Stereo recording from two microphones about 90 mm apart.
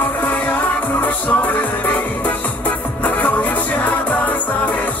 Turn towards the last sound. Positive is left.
turn(degrees=20)  # may be behind; listen again after turning